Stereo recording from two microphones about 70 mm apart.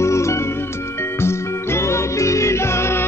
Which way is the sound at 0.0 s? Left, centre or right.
Left.